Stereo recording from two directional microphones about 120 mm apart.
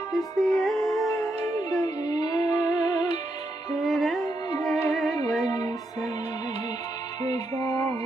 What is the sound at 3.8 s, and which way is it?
Music, centre (ahead or behind).